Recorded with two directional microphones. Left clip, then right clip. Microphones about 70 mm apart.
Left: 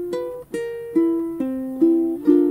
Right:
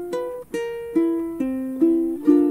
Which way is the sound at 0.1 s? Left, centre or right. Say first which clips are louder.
Even; right.